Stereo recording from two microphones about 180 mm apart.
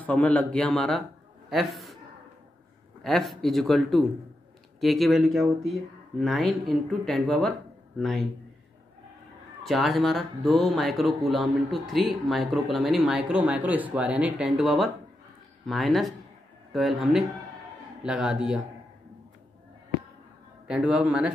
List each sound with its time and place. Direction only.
0.0 s a man's voice: 10° left (ahead or behind)
3.0 s speech: centre (ahead or behind)
9.6 s speech: centre (ahead or behind)
20.6 s speech: 5° right (ahead or behind)